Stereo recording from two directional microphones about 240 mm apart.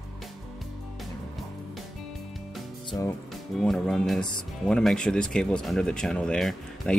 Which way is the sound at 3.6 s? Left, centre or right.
Centre.